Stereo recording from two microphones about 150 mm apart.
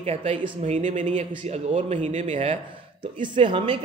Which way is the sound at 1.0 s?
40° right (ahead or behind).